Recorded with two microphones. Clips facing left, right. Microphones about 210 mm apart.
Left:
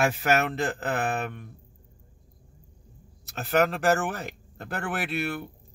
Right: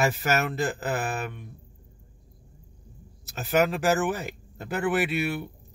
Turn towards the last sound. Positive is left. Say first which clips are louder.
# right 4 dB
turn(degrees=-5)  # may be behind; listen again after turning